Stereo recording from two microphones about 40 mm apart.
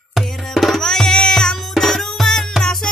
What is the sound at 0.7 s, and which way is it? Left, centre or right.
Music, centre.